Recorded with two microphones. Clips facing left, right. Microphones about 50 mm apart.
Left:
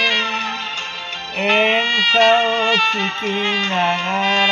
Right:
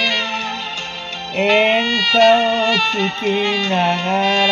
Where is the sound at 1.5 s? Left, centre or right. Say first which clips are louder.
Right 1 dB; left.